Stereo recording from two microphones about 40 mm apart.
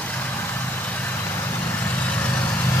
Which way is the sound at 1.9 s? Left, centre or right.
Left.